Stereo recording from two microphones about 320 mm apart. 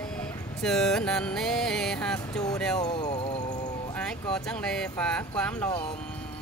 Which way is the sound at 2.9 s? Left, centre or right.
Centre.